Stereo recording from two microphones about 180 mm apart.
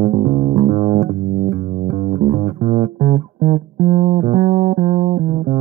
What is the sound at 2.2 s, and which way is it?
Music, 40° right (ahead or behind).